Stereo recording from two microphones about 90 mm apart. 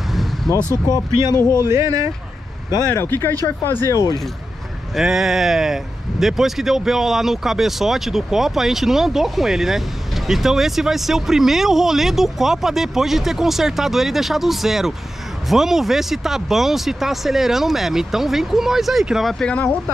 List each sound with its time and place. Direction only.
0.5 s speech: 40° left (ahead or behind)
1.7 s speech: 35° right (ahead or behind)
2.9 s speech: 25° left (ahead or behind)
4.9 s speech: 5° right (ahead or behind)